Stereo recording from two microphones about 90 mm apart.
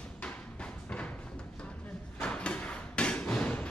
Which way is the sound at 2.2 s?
10° left (ahead or behind).